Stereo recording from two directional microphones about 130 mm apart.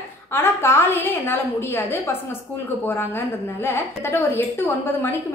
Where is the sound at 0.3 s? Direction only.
20° left (ahead or behind).